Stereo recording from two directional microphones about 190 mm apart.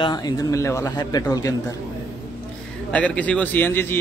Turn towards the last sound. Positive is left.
turn(degrees=10)  # may be behind; listen again after turning